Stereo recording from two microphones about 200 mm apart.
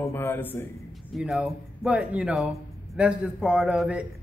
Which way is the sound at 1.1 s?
Centre (ahead or behind).